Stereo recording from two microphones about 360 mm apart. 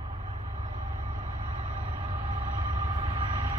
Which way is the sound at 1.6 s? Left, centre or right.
Centre.